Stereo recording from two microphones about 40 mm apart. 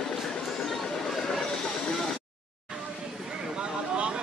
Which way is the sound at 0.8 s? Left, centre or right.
Centre.